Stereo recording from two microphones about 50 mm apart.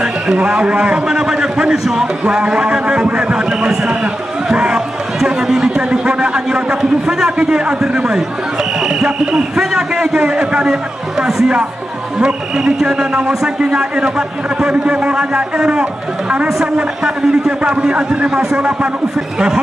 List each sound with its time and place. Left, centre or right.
0.0 s a man's voice: centre
5.8 s a man's voice: right
19.1 s a man's voice: centre